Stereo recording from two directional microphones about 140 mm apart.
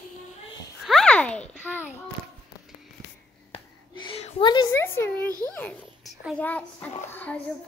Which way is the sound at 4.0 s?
35° left (ahead or behind).